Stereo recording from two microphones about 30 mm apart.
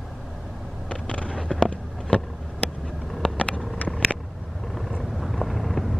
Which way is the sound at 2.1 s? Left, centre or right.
Left.